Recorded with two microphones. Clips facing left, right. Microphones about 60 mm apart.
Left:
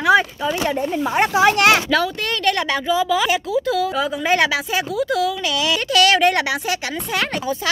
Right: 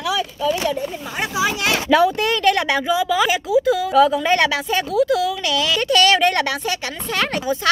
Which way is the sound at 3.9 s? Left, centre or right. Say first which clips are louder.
Right 5 dB; centre.